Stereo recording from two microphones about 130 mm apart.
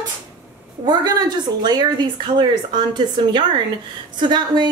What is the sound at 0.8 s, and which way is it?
A woman's voice, 30° right (ahead or behind).